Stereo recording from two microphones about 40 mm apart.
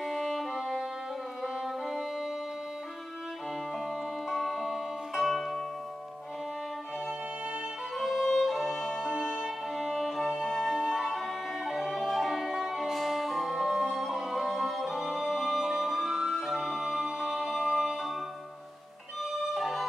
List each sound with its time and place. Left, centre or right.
0.0 s music: centre
4.3 s music: centre
8.0 s music: centre
9.0 s music: centre
9.8 s violin: centre
10.6 s music: centre
11.0 s music: centre
19.5 s music: centre